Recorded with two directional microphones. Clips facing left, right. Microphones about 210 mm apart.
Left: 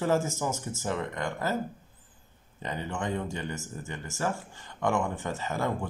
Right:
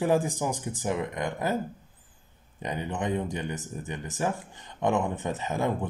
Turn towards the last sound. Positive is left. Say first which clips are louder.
# right 2 dB
turn(degrees=-20)  # may be behind; listen again after turning